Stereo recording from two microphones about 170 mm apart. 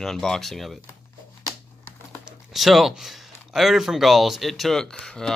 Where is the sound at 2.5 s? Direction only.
Centre (ahead or behind).